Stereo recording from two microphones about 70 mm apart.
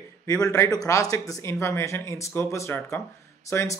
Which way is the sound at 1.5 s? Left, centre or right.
Left.